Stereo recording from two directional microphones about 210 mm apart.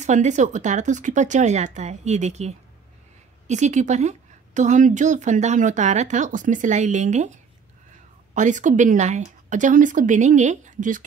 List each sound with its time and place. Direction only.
0.0 s speech: 35° right (ahead or behind)
8.4 s speech: 35° right (ahead or behind)